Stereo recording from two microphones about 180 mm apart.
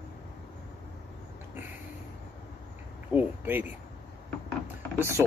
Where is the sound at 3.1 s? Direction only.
10° right (ahead or behind).